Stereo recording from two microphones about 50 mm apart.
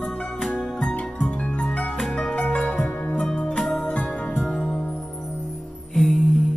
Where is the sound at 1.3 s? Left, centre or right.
Left.